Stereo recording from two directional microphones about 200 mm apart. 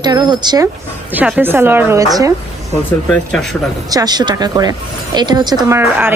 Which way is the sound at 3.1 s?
5° left (ahead or behind).